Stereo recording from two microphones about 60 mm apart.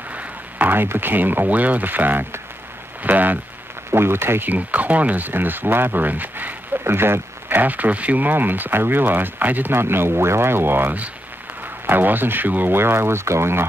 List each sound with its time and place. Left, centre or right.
0.1 s speech: right
3.9 s speech: right